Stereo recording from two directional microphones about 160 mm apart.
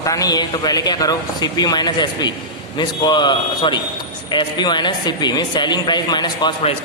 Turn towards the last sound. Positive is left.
turn(degrees=25)  # may be behind; listen again after turning